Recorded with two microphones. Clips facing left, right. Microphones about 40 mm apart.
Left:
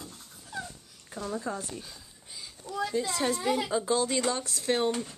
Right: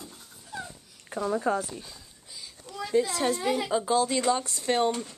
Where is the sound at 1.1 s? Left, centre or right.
Centre.